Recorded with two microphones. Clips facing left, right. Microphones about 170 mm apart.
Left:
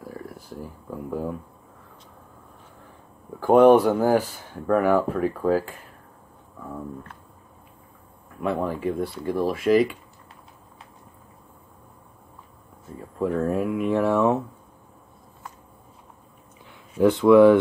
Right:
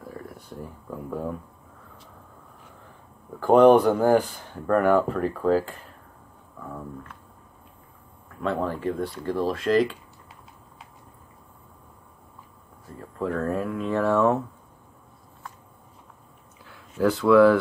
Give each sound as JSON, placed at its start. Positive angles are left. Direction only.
{"t": 0.1, "sound": "speech", "side_deg": 0}
{"t": 3.3, "sound": "speech", "side_deg": 5}
{"t": 8.4, "sound": "speech", "side_deg": 10}
{"t": 13.2, "sound": "speech", "side_deg": 10}
{"t": 16.6, "sound": "speech", "side_deg": 20}